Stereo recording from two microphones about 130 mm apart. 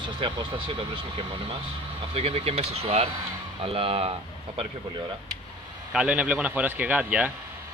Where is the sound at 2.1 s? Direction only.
50° right (ahead or behind).